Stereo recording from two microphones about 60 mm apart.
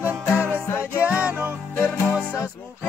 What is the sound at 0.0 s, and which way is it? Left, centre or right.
Music, right.